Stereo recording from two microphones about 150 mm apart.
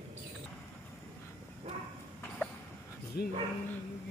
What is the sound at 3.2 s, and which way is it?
Speech, 90° left.